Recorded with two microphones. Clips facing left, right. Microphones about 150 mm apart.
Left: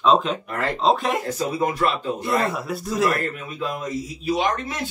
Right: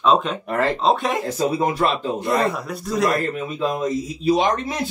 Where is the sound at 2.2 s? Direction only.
Centre (ahead or behind).